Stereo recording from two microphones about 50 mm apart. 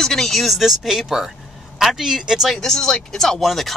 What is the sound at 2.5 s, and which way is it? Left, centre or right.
Speech, centre.